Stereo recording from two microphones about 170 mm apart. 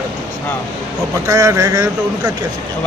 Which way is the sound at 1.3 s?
20° right (ahead or behind).